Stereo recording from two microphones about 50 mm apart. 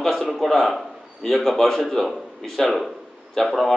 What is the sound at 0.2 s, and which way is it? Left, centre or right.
A man's voice, centre.